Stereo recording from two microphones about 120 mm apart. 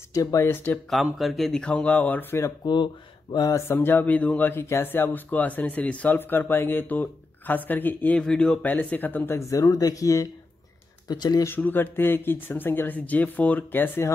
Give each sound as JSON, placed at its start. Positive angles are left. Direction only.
{"t": 0.1, "sound": "speech", "side_deg": 25}
{"t": 1.1, "sound": "speech", "side_deg": 0}
{"t": 2.6, "sound": "speech", "side_deg": 40}
{"t": 8.2, "sound": "speech", "side_deg": 5}
{"t": 11.4, "sound": "speech", "side_deg": 15}